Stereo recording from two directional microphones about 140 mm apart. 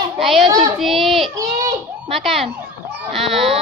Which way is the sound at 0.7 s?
Centre (ahead or behind).